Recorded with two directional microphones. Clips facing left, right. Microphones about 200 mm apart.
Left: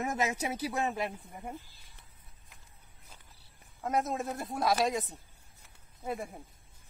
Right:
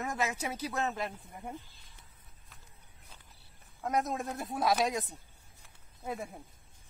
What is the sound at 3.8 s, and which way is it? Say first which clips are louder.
Speech: left 1 dB; centre (ahead or behind).